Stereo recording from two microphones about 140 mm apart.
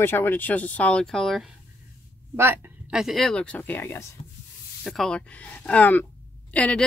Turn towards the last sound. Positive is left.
turn(degrees=10)  # may be behind; listen again after turning